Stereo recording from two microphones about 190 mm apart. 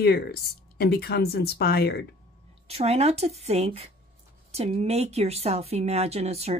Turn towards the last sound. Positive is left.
turn(degrees=-35)  # may be behind; listen again after turning